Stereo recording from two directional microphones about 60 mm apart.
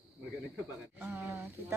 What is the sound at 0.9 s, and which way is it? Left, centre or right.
Speech, right.